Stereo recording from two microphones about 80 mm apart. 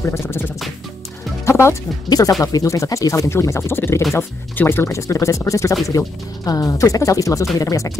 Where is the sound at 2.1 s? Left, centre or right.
Left.